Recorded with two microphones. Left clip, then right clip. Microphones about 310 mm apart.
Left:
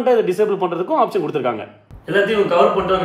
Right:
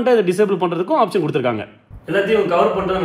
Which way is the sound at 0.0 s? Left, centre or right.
Right.